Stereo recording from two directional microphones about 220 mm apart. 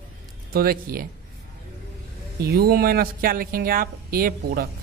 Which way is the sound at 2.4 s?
45° right (ahead or behind).